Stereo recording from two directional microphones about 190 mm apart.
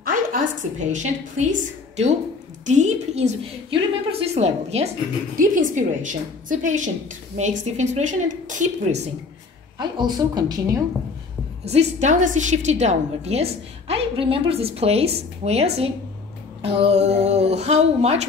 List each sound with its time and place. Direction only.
0.0 s a woman's voice: 45° right (ahead or behind)
9.8 s a woman's voice: 20° right (ahead or behind)
11.6 s a woman's voice: 35° right (ahead or behind)